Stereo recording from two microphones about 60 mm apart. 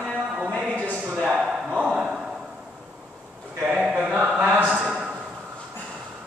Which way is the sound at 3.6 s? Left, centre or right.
Centre.